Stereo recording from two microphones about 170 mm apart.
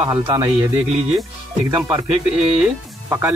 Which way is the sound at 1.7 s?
20° right (ahead or behind).